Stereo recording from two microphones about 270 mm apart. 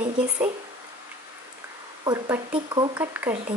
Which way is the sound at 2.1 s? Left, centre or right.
Centre.